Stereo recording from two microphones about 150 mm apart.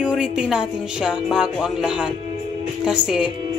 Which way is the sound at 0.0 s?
5° right (ahead or behind).